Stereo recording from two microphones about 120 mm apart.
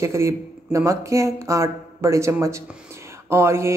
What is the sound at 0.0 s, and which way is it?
Speech, 25° right (ahead or behind).